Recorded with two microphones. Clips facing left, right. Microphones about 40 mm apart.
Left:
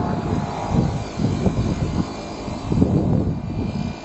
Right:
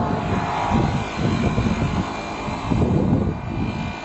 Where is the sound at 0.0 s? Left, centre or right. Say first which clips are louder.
Right 1 dB; right.